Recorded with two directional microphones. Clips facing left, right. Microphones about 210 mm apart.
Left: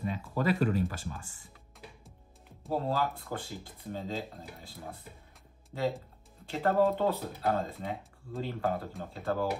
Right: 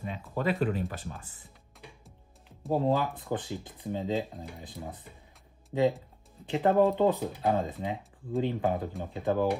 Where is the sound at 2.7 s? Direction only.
15° right (ahead or behind).